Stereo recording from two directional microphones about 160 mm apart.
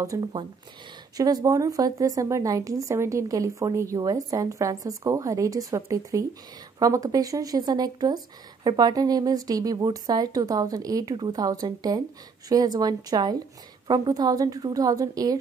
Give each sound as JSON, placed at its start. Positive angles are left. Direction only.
{"t": 0.0, "sound": "a woman's voice", "side_deg": -25}